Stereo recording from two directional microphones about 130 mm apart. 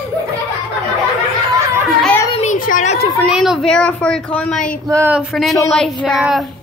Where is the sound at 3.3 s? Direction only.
Centre (ahead or behind).